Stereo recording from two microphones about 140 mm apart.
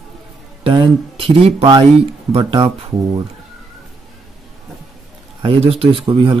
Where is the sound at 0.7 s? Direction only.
40° right (ahead or behind).